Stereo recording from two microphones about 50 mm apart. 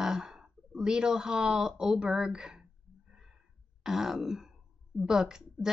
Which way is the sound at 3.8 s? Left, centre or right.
Centre.